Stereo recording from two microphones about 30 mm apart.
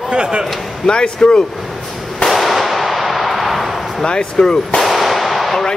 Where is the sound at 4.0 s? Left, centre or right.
Left.